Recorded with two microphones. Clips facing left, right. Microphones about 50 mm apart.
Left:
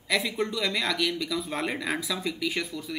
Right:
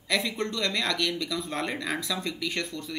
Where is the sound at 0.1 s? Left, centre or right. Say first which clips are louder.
Left 1 dB; centre.